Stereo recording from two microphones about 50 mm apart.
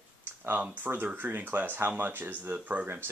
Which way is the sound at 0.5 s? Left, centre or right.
Right.